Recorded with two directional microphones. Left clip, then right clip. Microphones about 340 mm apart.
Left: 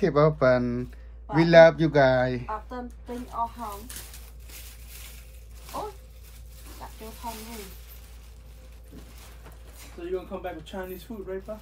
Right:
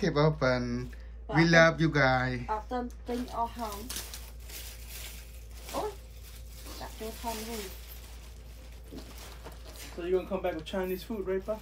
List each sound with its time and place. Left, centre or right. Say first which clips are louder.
0.0 s speech: left 6 dB; centre
5.7 s dog: even; centre
6.8 s speech: even; centre
8.9 s a sound: right 3 dB; centre
10.4 s speech: right 3 dB; centre